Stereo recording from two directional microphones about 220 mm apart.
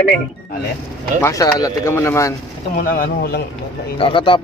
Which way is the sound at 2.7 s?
40° left (ahead or behind).